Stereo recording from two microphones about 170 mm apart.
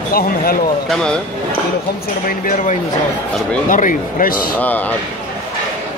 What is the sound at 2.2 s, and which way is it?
Speech, 55° left (ahead or behind).